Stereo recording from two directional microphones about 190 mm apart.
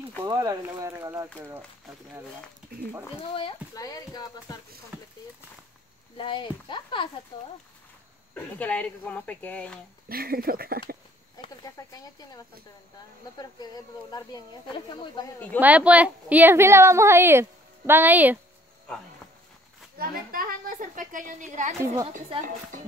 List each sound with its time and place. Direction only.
0.3 s a woman's voice: 20° right (ahead or behind)
3.3 s speech: 25° left (ahead or behind)
6.1 s speech: 25° left (ahead or behind)
8.4 s speech: 10° left (ahead or behind)
10.0 s a woman's voice: 50° right (ahead or behind)
11.4 s speech: 20° left (ahead or behind)
13.4 s speech: 20° left (ahead or behind)
15.6 s a woman's voice: 5° right (ahead or behind)
18.9 s speech: 5° left (ahead or behind)
20.0 s a woman's voice: 50° right (ahead or behind)